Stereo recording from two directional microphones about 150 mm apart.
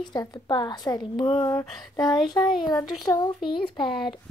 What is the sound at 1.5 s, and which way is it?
A child's voice, 20° left (ahead or behind).